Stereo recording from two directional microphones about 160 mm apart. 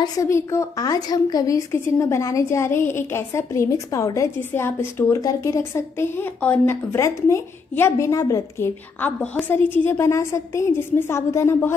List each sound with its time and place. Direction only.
0.0 s a woman's voice: 20° left (ahead or behind)